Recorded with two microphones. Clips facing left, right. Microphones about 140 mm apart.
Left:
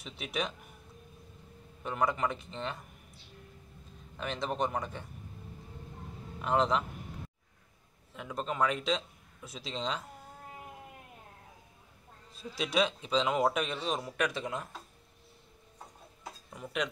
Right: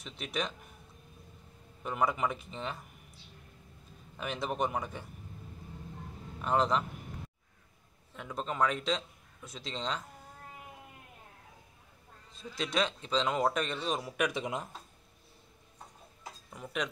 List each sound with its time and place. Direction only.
0.0 s a man's voice: 5° left (ahead or behind)
1.8 s a man's voice: 5° right (ahead or behind)
4.2 s speech: 5° right (ahead or behind)
6.4 s a man's voice: centre (ahead or behind)
8.1 s a man's voice: centre (ahead or behind)
12.4 s a man's voice: 5° left (ahead or behind); by 14.7 s 15° right (ahead or behind)
16.3 s a sound: centre (ahead or behind)